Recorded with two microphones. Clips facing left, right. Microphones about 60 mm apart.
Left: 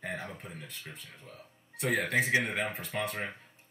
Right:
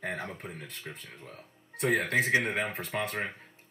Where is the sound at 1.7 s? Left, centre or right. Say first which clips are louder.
Right 2 dB; centre.